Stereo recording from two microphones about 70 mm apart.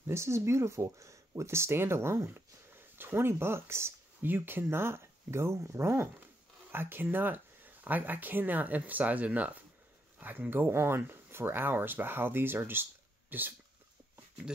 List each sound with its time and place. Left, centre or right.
0.0 s speech: right